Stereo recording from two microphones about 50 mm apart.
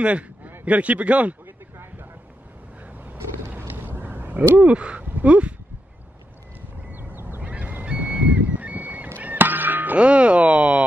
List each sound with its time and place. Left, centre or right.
0.0 s a sound: right
0.7 s speech: right
3.2 s a sound: right
5.2 s speech: right
6.9 s duck: right
7.4 s goose: right
7.8 s a sound: right
9.2 s music: right
9.9 s speech: right